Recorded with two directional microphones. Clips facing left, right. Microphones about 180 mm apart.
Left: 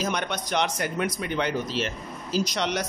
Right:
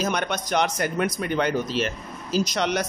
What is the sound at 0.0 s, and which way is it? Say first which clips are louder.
Speech: right 3 dB; 45° right (ahead or behind).